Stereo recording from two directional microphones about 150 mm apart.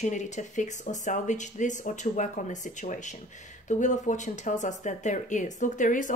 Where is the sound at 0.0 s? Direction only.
55° left (ahead or behind).